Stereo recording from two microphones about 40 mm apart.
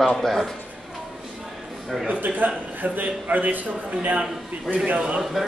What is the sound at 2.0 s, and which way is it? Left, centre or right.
A man's voice, right.